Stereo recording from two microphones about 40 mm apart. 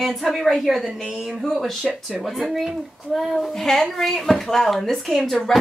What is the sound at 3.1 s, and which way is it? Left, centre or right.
A woman's voice, centre.